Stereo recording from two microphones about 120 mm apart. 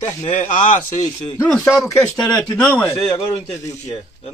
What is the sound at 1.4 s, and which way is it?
Speech, 5° left (ahead or behind).